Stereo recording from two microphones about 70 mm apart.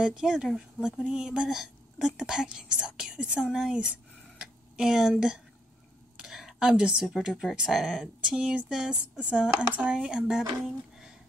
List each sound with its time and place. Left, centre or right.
0.0 s speech: centre
3.7 s a sound: centre
4.7 s speech: centre
6.2 s a sound: centre
6.7 s speech: centre
7.1 s speech: centre
8.2 s speech: centre